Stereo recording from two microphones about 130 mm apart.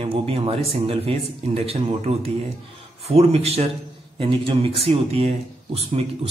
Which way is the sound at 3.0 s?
50° right (ahead or behind).